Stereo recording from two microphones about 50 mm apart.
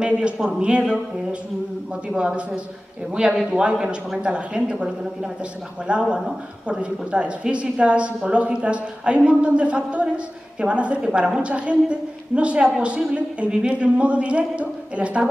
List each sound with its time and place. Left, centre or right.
0.0 s a man's voice: centre
2.1 s a man's voice: right